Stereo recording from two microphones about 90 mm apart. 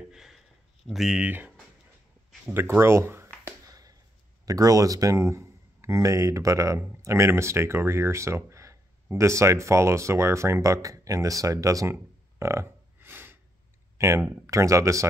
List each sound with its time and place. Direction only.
0.1 s a sound: 5° right (ahead or behind)
0.8 s speech: 5° right (ahead or behind)
2.5 s speech: 25° right (ahead or behind)
3.6 s finger snapping: 40° right (ahead or behind)
4.5 s speech: 40° right (ahead or behind); by 13.4 s 25° right (ahead or behind)
13.9 s speech: 35° right (ahead or behind)